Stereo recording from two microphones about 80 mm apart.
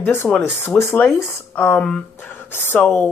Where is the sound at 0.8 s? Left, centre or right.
Left.